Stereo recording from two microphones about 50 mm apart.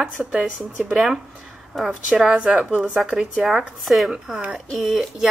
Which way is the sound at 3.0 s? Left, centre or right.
Centre.